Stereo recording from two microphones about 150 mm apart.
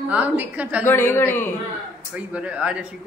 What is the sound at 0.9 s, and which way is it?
Speech, 15° left (ahead or behind).